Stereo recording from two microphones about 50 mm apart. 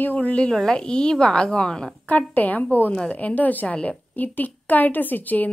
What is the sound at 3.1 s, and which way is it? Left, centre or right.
A woman's voice, left.